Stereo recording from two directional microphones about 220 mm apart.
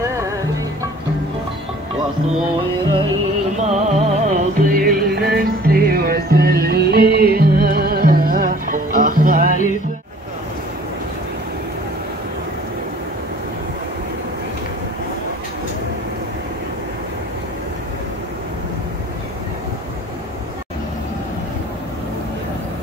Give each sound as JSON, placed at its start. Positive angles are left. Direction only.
{"t": 2.8, "sound": "music", "side_deg": -20}